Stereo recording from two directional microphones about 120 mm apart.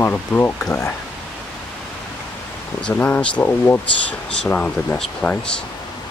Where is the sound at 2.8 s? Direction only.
15° left (ahead or behind).